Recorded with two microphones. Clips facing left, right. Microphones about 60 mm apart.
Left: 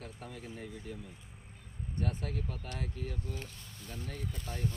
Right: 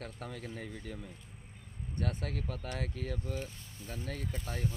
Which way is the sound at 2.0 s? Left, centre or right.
Right.